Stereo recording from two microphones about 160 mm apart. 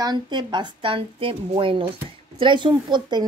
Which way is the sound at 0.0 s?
25° right (ahead or behind).